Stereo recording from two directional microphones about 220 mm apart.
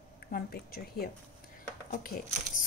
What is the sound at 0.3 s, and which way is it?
Speech, 45° left (ahead or behind).